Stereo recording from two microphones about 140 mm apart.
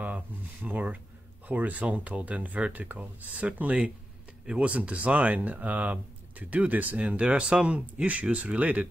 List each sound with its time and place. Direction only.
0.0 s speech: 10° right (ahead or behind)